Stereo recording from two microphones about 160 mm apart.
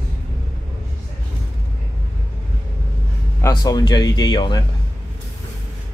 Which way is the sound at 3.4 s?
25° left (ahead or behind).